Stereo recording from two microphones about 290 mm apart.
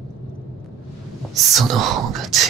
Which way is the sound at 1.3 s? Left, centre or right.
Centre.